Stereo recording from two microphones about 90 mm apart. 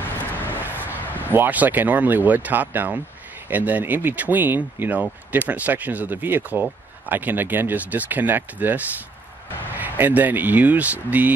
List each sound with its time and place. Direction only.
0.2 s vehicle: 20° left (ahead or behind)
0.6 s vehicle: 20° right (ahead or behind)
1.3 s speech: 20° right (ahead or behind)